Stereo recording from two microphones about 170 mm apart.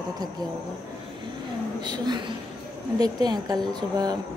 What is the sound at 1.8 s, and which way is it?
Speech, 25° right (ahead or behind).